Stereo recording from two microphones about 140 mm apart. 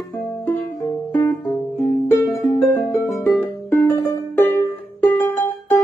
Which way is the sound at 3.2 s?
20° left (ahead or behind).